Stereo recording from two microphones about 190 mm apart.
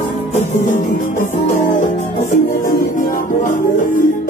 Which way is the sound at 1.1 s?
40° left (ahead or behind).